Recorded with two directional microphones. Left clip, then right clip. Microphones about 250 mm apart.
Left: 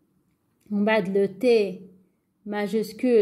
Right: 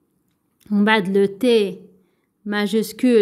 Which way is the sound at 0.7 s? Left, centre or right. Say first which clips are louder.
Right 5 dB; right.